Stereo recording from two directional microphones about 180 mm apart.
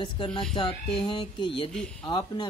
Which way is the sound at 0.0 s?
25° left (ahead or behind).